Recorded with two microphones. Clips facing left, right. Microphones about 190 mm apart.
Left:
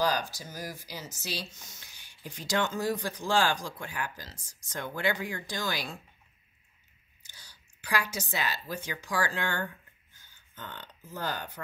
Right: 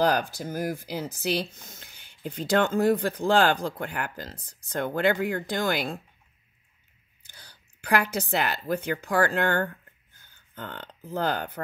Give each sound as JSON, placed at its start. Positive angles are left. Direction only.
{"t": 0.0, "sound": "speech", "side_deg": -55}
{"t": 7.2, "sound": "speech", "side_deg": -55}